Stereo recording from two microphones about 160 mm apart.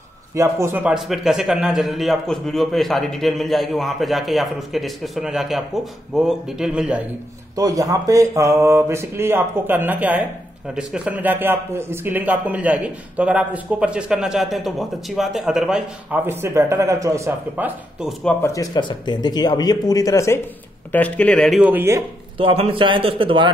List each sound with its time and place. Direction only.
0.3 s a man's voice: 15° right (ahead or behind)
7.5 s speech: 20° right (ahead or behind)
18.4 s speech: 20° left (ahead or behind); by 21.5 s 5° left (ahead or behind)
21.5 s speech: 10° right (ahead or behind)
22.4 s a man's voice: 35° right (ahead or behind)